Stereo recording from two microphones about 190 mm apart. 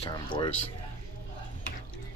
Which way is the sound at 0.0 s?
25° left (ahead or behind).